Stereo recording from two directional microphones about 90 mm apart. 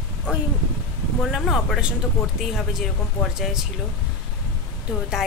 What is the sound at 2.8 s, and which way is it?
Speech, 5° left (ahead or behind).